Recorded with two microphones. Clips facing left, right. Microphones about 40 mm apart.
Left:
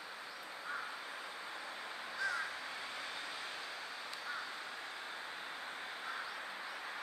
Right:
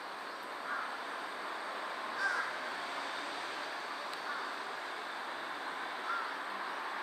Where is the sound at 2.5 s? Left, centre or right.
Centre.